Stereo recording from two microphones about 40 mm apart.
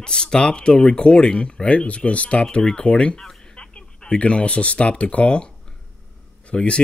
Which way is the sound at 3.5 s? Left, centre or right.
Left.